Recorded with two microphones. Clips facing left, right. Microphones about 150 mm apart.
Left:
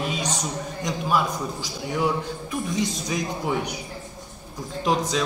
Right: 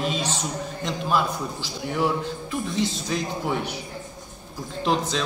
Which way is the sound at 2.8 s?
15° left (ahead or behind).